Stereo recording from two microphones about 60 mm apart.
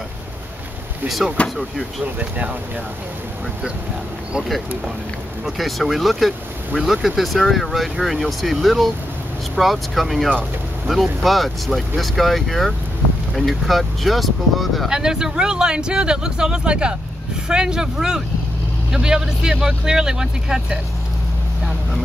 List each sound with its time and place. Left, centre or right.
1.4 s speech: left
2.1 s speech: right
5.4 s speech: centre
14.9 s speech: centre